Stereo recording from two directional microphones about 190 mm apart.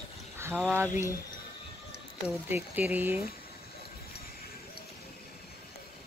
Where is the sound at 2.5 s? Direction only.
10° right (ahead or behind).